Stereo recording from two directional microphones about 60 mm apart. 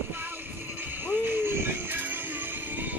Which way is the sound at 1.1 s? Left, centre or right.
Right.